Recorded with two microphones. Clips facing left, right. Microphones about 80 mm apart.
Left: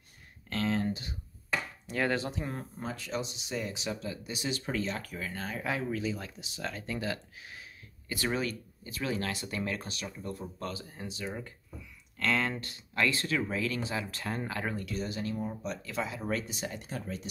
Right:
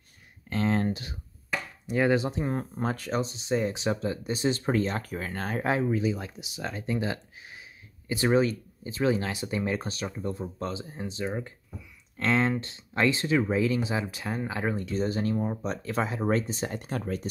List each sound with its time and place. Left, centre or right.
0.7 s a sound: right
1.9 s speech: centre
2.3 s speech: right
2.8 s speech: right
5.7 s speech: right
9.8 s speech: right
10.3 s speech: right
14.1 s speech: centre
14.9 s speech: right